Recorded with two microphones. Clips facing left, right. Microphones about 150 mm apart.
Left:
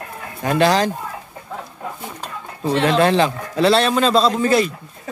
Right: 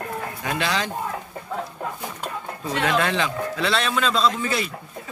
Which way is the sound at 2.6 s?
30° left (ahead or behind).